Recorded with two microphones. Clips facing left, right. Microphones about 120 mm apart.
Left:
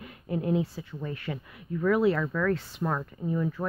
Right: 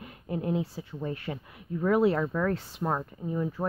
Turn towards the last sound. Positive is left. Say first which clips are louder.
# left 1 dB
turn(degrees=-20)  # may be behind; listen again after turning